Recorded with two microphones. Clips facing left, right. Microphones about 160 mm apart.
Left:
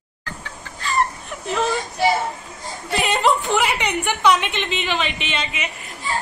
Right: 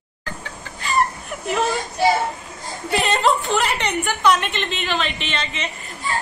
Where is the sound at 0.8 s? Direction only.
10° right (ahead or behind).